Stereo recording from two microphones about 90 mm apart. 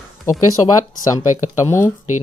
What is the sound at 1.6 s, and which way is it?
Speech, 30° left (ahead or behind).